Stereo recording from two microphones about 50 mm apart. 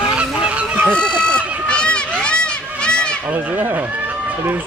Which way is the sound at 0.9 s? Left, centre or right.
Centre.